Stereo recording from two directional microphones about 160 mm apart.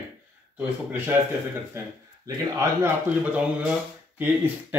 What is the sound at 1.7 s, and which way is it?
Speech, 15° right (ahead or behind).